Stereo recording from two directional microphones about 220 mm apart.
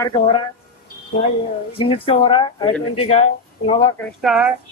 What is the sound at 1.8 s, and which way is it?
Speech, 25° left (ahead or behind).